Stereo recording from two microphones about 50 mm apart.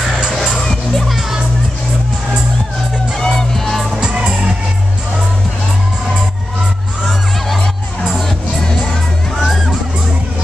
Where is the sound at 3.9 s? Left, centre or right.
Centre.